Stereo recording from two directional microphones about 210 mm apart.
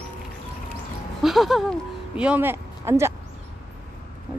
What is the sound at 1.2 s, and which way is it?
Speech, centre (ahead or behind).